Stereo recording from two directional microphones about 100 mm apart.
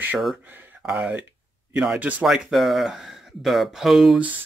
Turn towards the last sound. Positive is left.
turn(degrees=0)  # may be behind; listen again after turning